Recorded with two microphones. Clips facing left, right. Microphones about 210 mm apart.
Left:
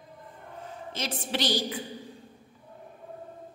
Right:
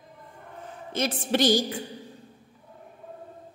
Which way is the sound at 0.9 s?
50° right (ahead or behind).